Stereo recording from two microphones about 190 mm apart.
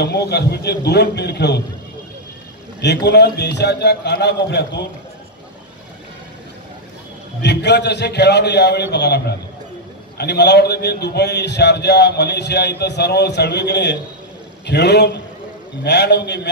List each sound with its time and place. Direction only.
0.0 s a man's voice: 60° left (ahead or behind)
2.8 s a man's voice: 60° left (ahead or behind)
7.4 s a man's voice: 65° left (ahead or behind)